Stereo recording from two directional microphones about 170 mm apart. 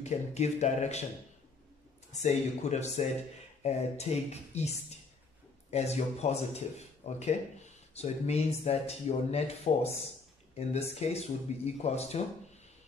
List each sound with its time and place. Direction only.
0.0 s speech: 40° left (ahead or behind)
2.1 s speech: 40° left (ahead or behind)